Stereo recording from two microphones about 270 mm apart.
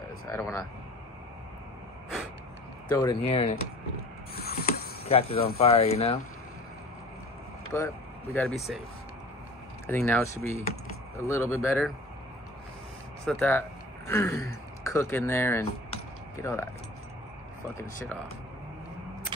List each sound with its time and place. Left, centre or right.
0.3 s speech: centre
2.9 s speech: centre
4.4 s a sound: left
5.0 s speech: left
7.7 s speech: centre
9.8 s speech: centre
13.2 s speech: centre